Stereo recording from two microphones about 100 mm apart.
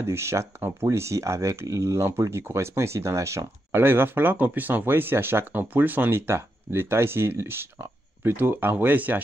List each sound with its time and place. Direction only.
0.0 s speech: 25° right (ahead or behind)